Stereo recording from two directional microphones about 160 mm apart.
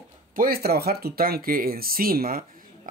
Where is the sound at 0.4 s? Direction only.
75° right (ahead or behind).